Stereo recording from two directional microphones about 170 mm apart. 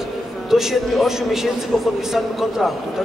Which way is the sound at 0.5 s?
Centre (ahead or behind).